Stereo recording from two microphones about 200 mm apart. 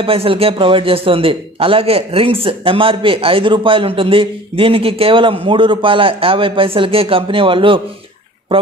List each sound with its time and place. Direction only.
0.0 s a man's voice: 25° right (ahead or behind)